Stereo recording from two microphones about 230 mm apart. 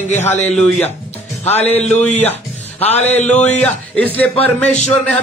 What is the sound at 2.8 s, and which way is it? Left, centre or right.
Speech, left.